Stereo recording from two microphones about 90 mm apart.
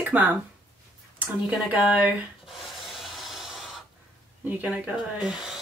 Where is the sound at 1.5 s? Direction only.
15° right (ahead or behind).